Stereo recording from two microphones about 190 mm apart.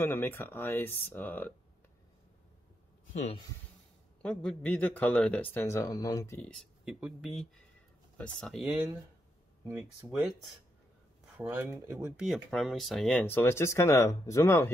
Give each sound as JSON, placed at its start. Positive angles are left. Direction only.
{"t": 0.0, "sound": "speech", "side_deg": 10}
{"t": 3.1, "sound": "speech", "side_deg": 35}
{"t": 4.2, "sound": "speech", "side_deg": 5}
{"t": 6.5, "sound": "speech", "side_deg": 0}
{"t": 9.7, "sound": "speech", "side_deg": -10}
{"t": 11.3, "sound": "speech", "side_deg": -10}
{"t": 12.2, "sound": "speech", "side_deg": 0}